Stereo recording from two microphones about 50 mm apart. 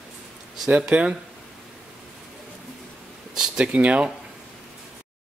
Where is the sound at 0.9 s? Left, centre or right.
Right.